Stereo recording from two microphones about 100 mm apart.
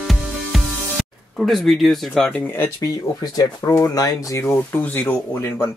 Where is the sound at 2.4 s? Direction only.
20° left (ahead or behind).